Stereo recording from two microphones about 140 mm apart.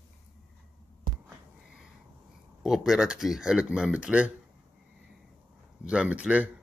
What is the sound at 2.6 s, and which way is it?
Speech, 5° right (ahead or behind).